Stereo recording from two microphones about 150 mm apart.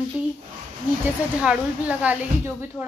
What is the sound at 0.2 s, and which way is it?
Speech, 5° right (ahead or behind).